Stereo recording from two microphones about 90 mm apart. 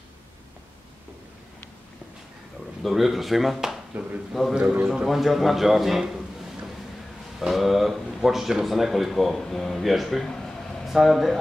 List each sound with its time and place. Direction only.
2.8 s speech: centre (ahead or behind)
3.9 s speech: 15° right (ahead or behind)
4.3 s a man's voice: centre (ahead or behind)